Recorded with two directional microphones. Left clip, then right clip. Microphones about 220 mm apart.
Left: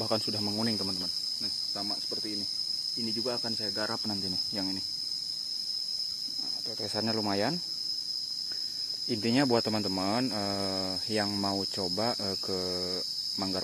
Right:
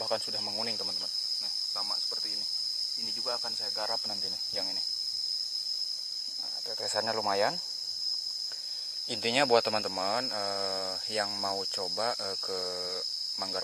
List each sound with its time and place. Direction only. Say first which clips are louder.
7.0 s speech: right 2 dB; 15° right (ahead or behind)
9.2 s speech: right 3 dB; 25° right (ahead or behind)